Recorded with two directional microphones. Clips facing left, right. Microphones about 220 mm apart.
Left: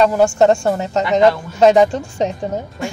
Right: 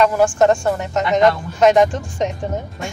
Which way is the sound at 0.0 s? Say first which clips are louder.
Left 2 dB; 25° left (ahead or behind).